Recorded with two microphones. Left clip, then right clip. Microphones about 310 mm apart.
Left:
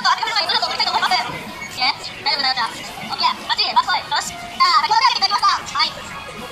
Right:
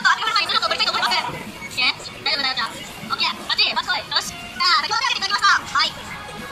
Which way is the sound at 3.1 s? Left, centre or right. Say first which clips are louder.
Left 2 dB; centre.